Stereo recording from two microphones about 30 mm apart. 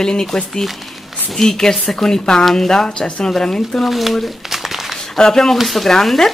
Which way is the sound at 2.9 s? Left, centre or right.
Left.